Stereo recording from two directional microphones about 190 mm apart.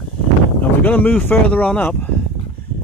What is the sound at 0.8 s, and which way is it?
Speech, 10° left (ahead or behind).